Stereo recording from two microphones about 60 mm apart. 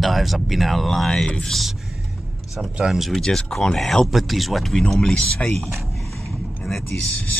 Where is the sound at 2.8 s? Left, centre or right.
Centre.